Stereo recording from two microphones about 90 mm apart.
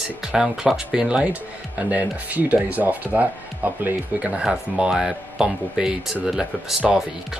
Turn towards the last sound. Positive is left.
turn(degrees=-5)  # may be behind; listen again after turning